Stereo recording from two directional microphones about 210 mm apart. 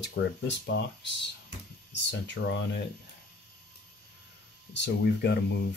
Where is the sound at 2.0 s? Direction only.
55° left (ahead or behind).